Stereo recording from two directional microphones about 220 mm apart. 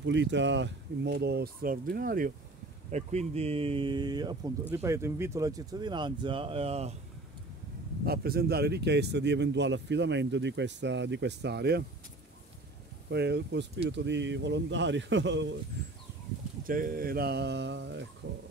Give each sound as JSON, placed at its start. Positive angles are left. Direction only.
{"t": 0.0, "sound": "speech", "side_deg": -55}
{"t": 8.0, "sound": "speech", "side_deg": -45}
{"t": 13.1, "sound": "speech", "side_deg": -50}
{"t": 16.6, "sound": "speech", "side_deg": -40}